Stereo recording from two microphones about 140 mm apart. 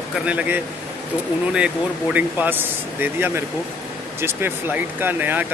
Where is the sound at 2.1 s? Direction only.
10° right (ahead or behind).